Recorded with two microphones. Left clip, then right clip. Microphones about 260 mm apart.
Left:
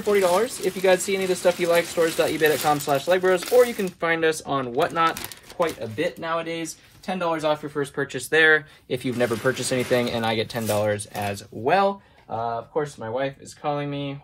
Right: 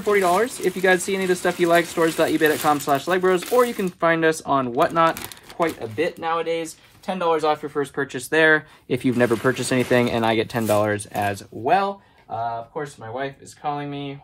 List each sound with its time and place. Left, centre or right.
0.0 s speech: right
11.5 s speech: centre
12.7 s speech: centre